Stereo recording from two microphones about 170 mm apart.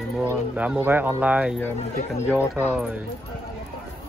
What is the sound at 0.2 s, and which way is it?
Speech, 10° right (ahead or behind).